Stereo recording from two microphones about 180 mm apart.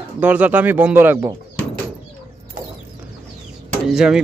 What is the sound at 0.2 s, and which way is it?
Speech, 10° right (ahead or behind).